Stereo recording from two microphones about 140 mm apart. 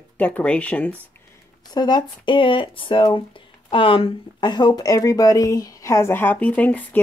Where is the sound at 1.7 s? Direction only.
30° left (ahead or behind); by 7.0 s 10° left (ahead or behind).